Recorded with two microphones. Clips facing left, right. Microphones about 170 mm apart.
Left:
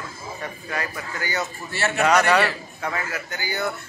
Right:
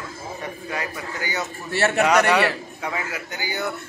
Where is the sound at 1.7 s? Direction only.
60° right (ahead or behind).